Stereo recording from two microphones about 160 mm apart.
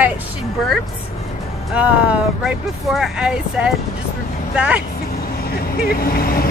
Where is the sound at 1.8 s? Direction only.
5° right (ahead or behind).